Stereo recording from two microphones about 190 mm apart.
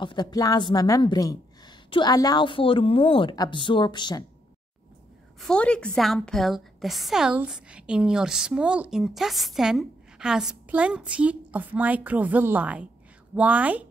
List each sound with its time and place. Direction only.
0.0 s a woman's voice: 25° left (ahead or behind)
5.4 s a woman's voice: 5° left (ahead or behind)